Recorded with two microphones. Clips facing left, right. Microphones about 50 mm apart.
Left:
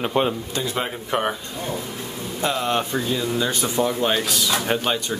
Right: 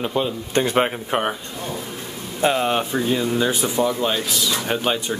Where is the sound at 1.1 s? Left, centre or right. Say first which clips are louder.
Even; right.